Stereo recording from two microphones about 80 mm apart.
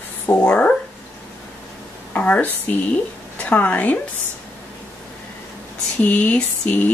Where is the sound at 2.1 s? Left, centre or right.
Left.